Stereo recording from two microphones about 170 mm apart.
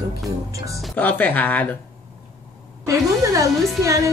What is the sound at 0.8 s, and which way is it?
Speech, 10° left (ahead or behind).